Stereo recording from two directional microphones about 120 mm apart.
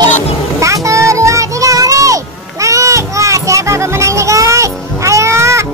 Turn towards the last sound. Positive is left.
turn(degrees=-25)  # may be behind; listen again after turning